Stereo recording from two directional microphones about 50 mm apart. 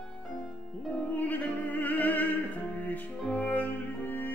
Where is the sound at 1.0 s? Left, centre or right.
Left.